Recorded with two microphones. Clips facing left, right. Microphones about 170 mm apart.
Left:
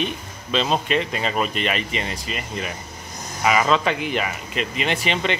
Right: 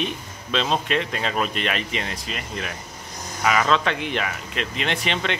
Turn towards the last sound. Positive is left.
turn(degrees=0)  # may be behind; listen again after turning